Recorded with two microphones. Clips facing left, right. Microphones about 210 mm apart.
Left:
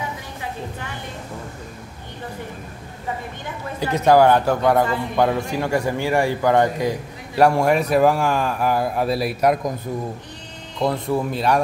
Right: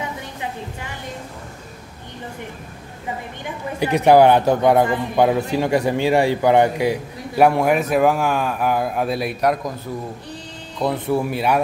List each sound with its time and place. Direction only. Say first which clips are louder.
3.8 s a man's voice: right 2 dB; 15° right (ahead or behind); by 9.6 s 5° left (ahead or behind)
10.8 s a man's voice: right 1 dB; 5° right (ahead or behind)